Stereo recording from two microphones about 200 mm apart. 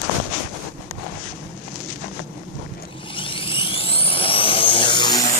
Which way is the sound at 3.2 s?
25° left (ahead or behind).